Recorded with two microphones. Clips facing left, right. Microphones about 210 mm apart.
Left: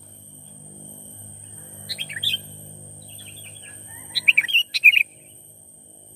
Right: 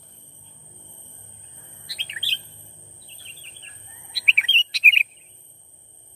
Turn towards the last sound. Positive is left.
turn(degrees=0)  # may be behind; listen again after turning